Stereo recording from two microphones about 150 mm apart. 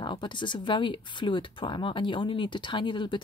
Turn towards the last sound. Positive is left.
turn(degrees=30)  # may be behind; listen again after turning